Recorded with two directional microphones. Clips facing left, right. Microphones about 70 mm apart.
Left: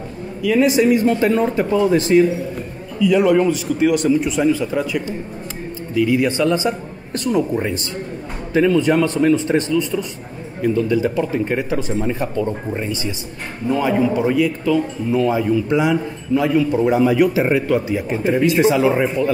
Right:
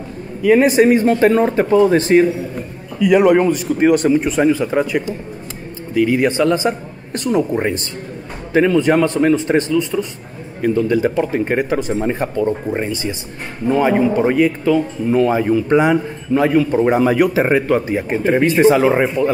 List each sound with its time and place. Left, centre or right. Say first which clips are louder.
0.4 s speech: right 4 dB; right
3.0 s a man's voice: right 3 dB; right
12.0 s speech: right 3 dB; right